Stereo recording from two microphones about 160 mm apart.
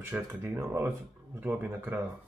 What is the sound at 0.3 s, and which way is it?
Speech, 15° right (ahead or behind).